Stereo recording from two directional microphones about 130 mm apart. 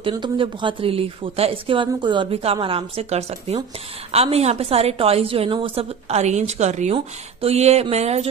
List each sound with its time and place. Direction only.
0.0 s speech: 40° right (ahead or behind); by 8.3 s 55° right (ahead or behind)